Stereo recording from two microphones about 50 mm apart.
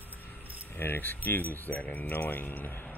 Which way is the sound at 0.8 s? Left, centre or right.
Left.